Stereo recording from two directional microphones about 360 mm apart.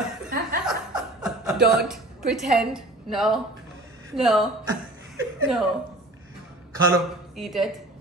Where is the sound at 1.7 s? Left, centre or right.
Centre.